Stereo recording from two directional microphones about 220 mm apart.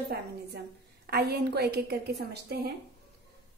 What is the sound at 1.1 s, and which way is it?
A woman's voice, 45° right (ahead or behind).